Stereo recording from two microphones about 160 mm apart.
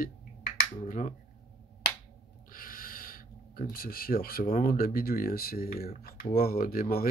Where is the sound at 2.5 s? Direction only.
65° left (ahead or behind).